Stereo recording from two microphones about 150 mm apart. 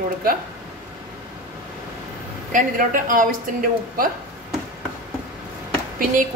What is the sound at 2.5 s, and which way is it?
Speech, 60° right (ahead or behind).